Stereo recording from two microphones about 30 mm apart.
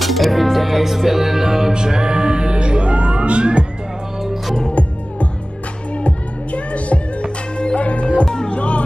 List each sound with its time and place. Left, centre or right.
0.0 s music: centre; by 3.6 s right
5.9 s music: left
7.8 s music: left